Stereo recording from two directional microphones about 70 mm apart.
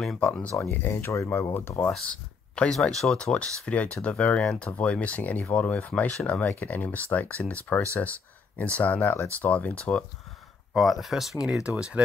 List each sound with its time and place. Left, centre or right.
0.2 s speech: centre
0.7 s speech: left
1.9 s speech: centre
10.7 s speech: centre
11.4 s speech: centre